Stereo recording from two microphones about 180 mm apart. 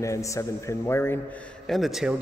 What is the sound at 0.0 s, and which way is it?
A man's voice, 15° left (ahead or behind).